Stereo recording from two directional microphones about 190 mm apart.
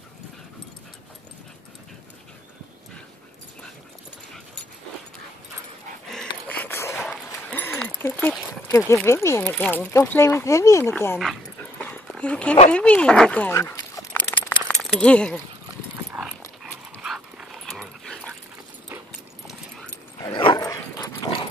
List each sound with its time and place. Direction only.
6.4 s a sound: 10° left (ahead or behind)
7.0 s dog: 5° left (ahead or behind)
8.6 s a sound: 15° left (ahead or behind)
9.0 s speech: 15° left (ahead or behind)
11.8 s dog: 5° left (ahead or behind)
17.0 s dog: centre (ahead or behind)
20.2 s dog: 25° left (ahead or behind)